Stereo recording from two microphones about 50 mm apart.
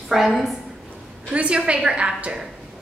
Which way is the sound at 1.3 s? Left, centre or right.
Right.